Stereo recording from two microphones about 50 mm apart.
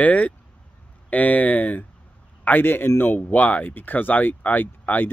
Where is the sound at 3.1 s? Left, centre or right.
Left.